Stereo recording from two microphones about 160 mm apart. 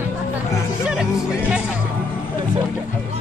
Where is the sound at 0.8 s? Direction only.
5° right (ahead or behind).